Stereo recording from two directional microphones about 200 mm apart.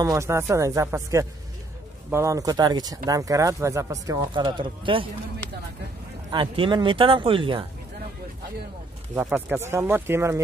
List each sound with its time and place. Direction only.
0.0 s speech: 15° right (ahead or behind)
6.3 s speech: 25° right (ahead or behind)
9.1 s speech: 10° right (ahead or behind)